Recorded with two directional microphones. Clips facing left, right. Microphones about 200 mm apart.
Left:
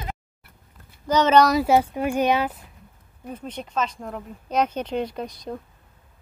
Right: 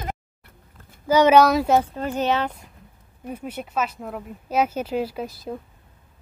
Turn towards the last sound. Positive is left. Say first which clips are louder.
# right 1 dB
turn(degrees=-5)  # may be behind; listen again after turning